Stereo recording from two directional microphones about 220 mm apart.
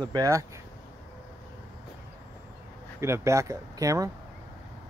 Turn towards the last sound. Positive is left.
turn(degrees=-15)  # may be behind; listen again after turning